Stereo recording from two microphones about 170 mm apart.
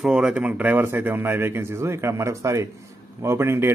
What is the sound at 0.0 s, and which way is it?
A man's voice, 5° right (ahead or behind).